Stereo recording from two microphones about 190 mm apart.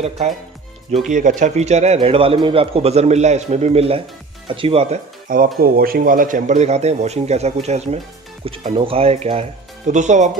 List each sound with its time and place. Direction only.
1.0 s a man's voice: 40° right (ahead or behind)
5.6 s a man's voice: 50° right (ahead or behind)